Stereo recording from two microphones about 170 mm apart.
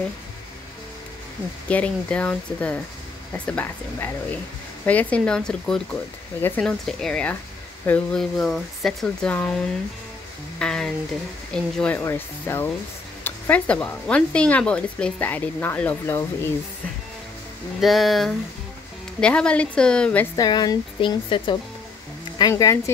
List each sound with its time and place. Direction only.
1.7 s speech: 10° left (ahead or behind)
10.6 s a sound: 5° left (ahead or behind)
11.5 s speech: 10° left (ahead or behind)
17.7 s speech: centre (ahead or behind)
20.3 s speech: 25° left (ahead or behind)